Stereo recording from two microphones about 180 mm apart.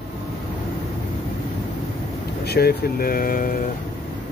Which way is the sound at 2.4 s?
60° left (ahead or behind).